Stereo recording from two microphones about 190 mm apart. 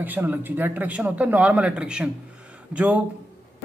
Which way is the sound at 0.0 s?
10° right (ahead or behind).